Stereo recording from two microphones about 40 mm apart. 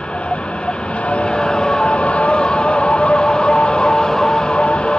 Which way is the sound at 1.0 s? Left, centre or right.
Left.